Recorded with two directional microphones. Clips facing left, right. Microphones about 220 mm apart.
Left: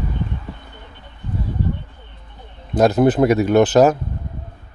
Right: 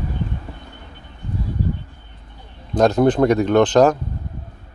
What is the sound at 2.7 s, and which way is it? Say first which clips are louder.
Speech: left 1 dB; 5° left (ahead or behind).